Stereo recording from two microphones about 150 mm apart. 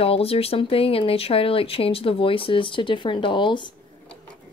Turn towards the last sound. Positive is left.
turn(degrees=30)  # may be behind; listen again after turning